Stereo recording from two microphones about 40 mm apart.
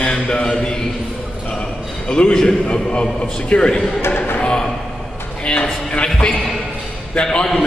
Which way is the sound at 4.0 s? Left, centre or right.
Left.